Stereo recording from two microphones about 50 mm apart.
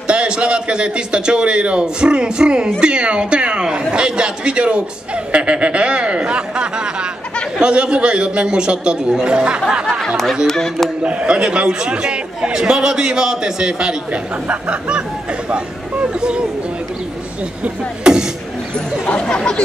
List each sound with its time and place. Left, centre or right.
0.1 s speech: right
10.0 s speech: centre
11.1 s speech: right
17.6 s speech: centre
19.0 s speech: centre